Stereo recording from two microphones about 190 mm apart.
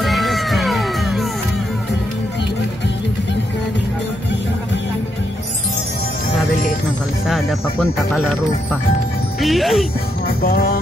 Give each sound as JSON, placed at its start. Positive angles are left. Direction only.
{"t": 0.0, "sound": "music", "side_deg": 0}
{"t": 7.2, "sound": "speech", "side_deg": 0}
{"t": 9.4, "sound": "speech", "side_deg": 0}
{"t": 10.4, "sound": "music", "side_deg": 55}